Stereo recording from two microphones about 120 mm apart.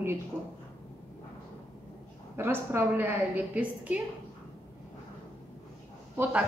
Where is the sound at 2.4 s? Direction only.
20° right (ahead or behind).